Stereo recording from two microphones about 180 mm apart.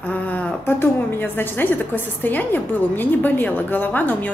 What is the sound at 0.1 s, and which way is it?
A woman's voice, 10° left (ahead or behind).